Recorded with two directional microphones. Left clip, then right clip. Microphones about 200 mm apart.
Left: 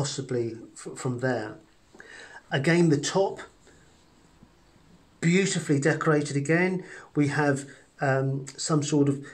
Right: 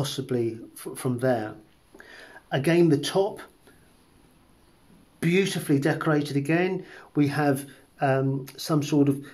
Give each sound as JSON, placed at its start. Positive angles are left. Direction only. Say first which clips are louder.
{"t": 0.0, "sound": "speech", "louder": "right 2 dB", "side_deg": -30}
{"t": 2.0, "sound": "a sound", "louder": "left 1 dB", "side_deg": -20}
{"t": 5.2, "sound": "speech", "louder": "right 1 dB", "side_deg": -20}